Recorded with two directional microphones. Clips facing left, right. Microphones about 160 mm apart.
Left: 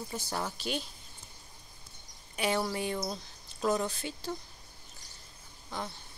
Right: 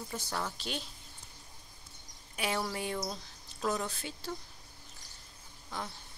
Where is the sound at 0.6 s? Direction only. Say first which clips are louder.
Left 4 dB; 5° left (ahead or behind).